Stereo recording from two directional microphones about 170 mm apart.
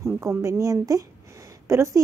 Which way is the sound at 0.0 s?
15° right (ahead or behind).